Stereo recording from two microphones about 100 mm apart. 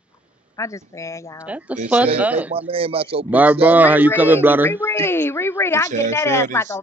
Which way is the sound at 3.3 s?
15° right (ahead or behind).